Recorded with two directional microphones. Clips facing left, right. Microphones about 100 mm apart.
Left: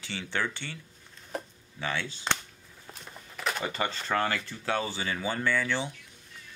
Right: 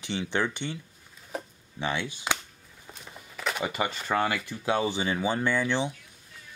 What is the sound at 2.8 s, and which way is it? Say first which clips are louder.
Speech: right 1 dB; centre (ahead or behind).